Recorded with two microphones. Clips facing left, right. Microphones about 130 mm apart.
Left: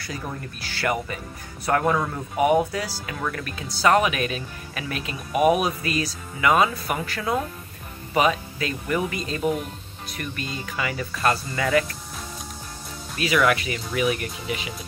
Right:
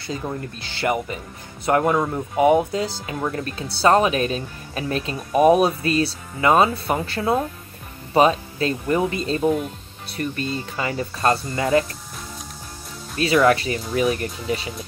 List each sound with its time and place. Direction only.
0.0 s speech: 25° right (ahead or behind)
13.2 s speech: 30° right (ahead or behind)